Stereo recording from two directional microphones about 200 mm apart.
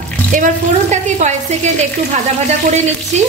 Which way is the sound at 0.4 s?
40° right (ahead or behind).